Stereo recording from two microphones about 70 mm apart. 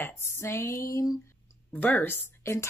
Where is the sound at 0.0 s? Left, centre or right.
Left.